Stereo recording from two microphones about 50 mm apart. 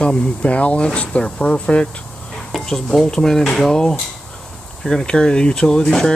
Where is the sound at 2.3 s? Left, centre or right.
Centre.